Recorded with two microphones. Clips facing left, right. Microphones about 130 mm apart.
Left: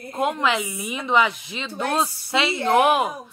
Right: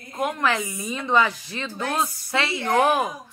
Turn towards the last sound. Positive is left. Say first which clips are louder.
# left 2 dB
turn(degrees=20)  # may be behind; listen again after turning